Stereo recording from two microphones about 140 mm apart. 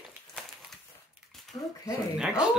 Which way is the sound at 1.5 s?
30° left (ahead or behind).